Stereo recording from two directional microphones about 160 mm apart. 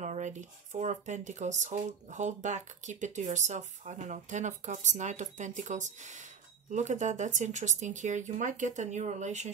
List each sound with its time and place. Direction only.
0.0 s speech: 50° right (ahead or behind)